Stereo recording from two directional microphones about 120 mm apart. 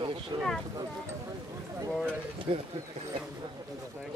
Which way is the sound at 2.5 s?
55° right (ahead or behind).